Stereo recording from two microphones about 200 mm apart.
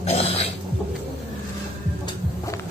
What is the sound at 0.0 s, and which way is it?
Cough, 30° left (ahead or behind).